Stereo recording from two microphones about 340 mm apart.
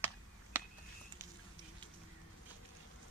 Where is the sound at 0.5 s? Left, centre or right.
Centre.